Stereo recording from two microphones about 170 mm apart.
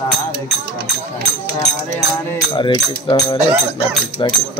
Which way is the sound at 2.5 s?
30° left (ahead or behind).